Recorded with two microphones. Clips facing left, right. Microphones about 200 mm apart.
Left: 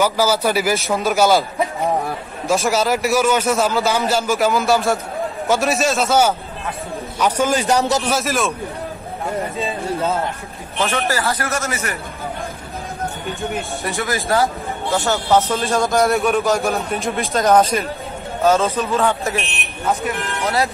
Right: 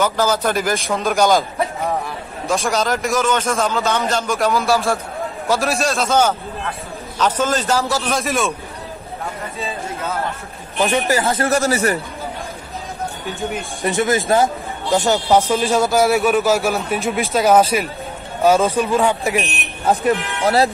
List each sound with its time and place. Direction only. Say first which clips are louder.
0.0 s a man's voice: left 1 dB; 10° left (ahead or behind)
2.4 s a man's voice: left 2 dB; 5° left (ahead or behind)
8.1 s speech: even; centre (ahead or behind)
10.8 s speech: right 3 dB; 15° right (ahead or behind)
11.4 s speech: right 7 dB; 35° right (ahead or behind)
13.3 s speech: even; centre (ahead or behind)
13.8 s speech: right 6 dB; 20° right (ahead or behind)
19.9 s speech: right 5 dB; 35° right (ahead or behind)